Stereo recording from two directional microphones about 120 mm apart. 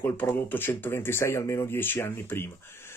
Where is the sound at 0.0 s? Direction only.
15° left (ahead or behind).